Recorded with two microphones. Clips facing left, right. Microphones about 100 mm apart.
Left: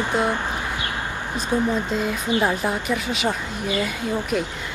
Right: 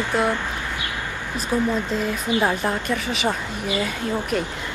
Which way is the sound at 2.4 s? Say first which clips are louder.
Even; centre (ahead or behind).